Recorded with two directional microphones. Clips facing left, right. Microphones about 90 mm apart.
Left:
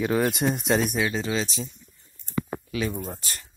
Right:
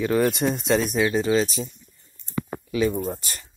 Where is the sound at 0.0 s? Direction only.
15° left (ahead or behind); by 1.7 s 5° right (ahead or behind).